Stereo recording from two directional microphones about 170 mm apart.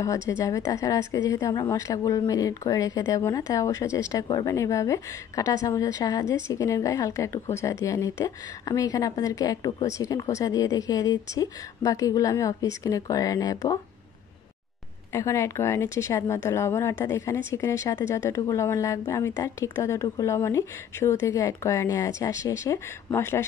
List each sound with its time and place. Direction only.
0.3 s a woman's voice: 15° left (ahead or behind)
15.1 s speech: 15° left (ahead or behind)